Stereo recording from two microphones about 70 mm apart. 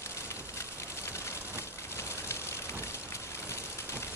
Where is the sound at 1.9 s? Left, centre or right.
Left.